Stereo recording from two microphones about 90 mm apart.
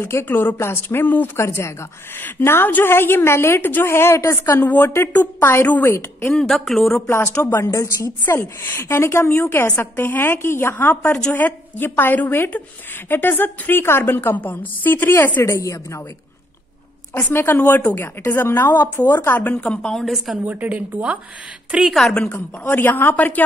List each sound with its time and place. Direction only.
0.0 s a woman's voice: 25° left (ahead or behind)
6.3 s speech: centre (ahead or behind)
7.4 s a woman's voice: 30° left (ahead or behind)
11.0 s a woman's voice: 10° left (ahead or behind)
15.4 s speech: 35° left (ahead or behind)
17.1 s a woman's voice: 25° left (ahead or behind); by 20.3 s centre (ahead or behind)
20.4 s a woman's voice: 15° right (ahead or behind)
21.7 s speech: centre (ahead or behind)
22.7 s a woman's voice: 20° left (ahead or behind)